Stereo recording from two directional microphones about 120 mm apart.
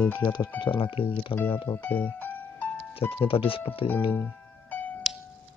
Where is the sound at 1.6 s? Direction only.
20° left (ahead or behind).